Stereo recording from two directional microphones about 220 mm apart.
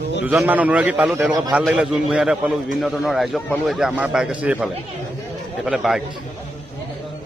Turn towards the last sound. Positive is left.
turn(degrees=0)  # may be behind; listen again after turning